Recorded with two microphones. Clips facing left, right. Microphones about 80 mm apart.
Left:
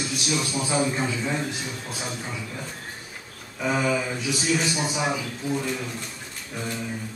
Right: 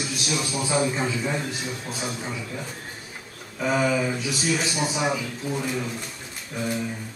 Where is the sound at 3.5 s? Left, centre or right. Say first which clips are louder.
Right 1 dB; centre.